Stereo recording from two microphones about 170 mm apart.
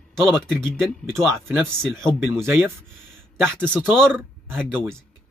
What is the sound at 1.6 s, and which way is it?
Speech, 5° left (ahead or behind).